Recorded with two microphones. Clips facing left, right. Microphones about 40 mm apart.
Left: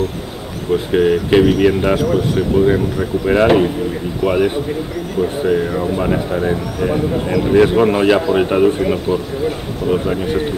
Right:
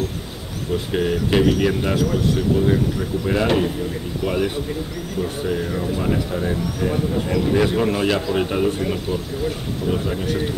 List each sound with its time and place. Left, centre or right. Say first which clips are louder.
0.7 s speech: left 7 dB; centre
2.5 s speech: left 8 dB; left